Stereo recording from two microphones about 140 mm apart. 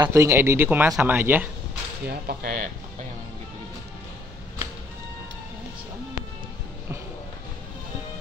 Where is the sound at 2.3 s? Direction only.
90° right.